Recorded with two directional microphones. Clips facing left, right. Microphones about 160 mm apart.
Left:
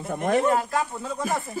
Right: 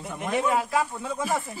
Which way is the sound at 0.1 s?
45° left (ahead or behind).